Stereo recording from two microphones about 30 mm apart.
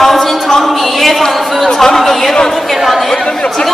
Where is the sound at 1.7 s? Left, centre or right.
Centre.